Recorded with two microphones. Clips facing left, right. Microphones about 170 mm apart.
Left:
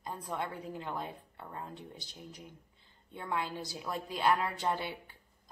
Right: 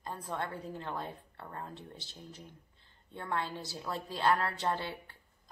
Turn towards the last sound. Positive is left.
turn(degrees=15)  # may be behind; listen again after turning